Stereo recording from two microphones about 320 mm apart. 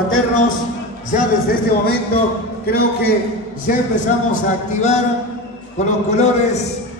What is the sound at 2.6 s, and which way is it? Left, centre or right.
A man's voice, left.